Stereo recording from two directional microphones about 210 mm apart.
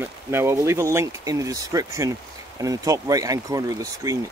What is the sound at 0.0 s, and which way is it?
Speech, 10° right (ahead or behind).